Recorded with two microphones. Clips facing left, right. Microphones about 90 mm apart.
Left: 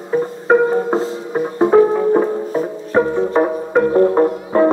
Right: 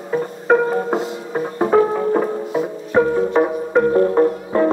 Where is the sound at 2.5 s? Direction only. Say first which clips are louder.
Left 1 dB; 35° left (ahead or behind).